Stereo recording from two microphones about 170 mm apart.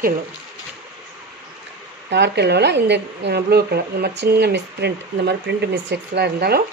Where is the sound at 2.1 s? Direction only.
80° right.